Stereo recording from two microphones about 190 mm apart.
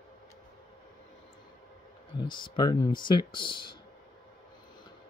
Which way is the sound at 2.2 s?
25° left (ahead or behind).